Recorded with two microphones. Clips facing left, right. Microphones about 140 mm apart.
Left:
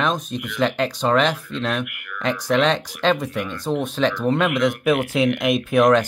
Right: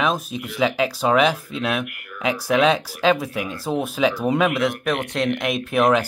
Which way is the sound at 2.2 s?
5° right (ahead or behind).